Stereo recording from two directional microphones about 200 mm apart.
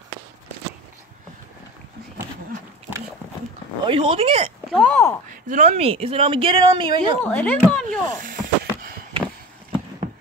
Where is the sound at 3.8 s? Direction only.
25° right (ahead or behind).